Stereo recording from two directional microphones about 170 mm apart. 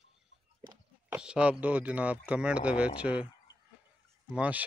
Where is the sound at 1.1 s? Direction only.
5° right (ahead or behind).